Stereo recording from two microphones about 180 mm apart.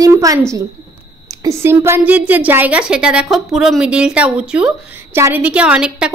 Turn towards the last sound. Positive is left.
turn(degrees=-5)  # may be behind; listen again after turning